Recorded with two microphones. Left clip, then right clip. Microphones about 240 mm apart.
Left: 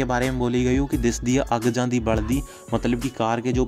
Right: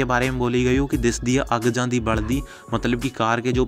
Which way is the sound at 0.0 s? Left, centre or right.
Centre.